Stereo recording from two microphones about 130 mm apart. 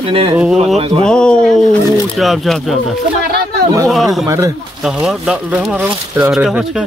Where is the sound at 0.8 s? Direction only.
45° right (ahead or behind).